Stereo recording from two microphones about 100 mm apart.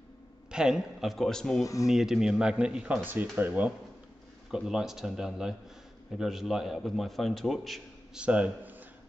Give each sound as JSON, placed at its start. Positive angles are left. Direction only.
{"t": 0.5, "sound": "a man's voice", "side_deg": -5}
{"t": 1.6, "sound": "speech", "side_deg": 35}
{"t": 1.9, "sound": "speech", "side_deg": -5}
{"t": 4.5, "sound": "a man's voice", "side_deg": -5}
{"t": 8.2, "sound": "speech", "side_deg": -15}